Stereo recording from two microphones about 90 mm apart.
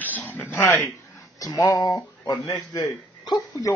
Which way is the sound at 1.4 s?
45° left (ahead or behind).